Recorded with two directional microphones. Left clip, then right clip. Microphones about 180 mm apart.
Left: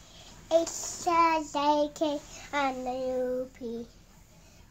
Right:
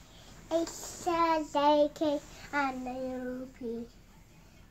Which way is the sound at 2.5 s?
35° left (ahead or behind).